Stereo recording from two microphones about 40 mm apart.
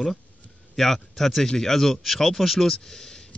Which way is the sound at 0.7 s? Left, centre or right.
Centre.